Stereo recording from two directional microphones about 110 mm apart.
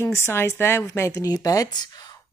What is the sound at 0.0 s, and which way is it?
A woman's voice, 20° left (ahead or behind).